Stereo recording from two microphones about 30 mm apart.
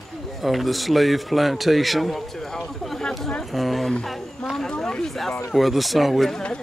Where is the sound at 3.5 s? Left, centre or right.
Centre.